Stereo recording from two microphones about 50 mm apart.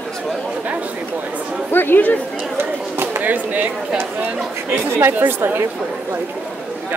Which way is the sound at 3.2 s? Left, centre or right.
Right.